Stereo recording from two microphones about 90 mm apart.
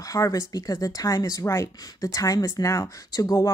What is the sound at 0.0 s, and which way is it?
Speech, 40° left (ahead or behind).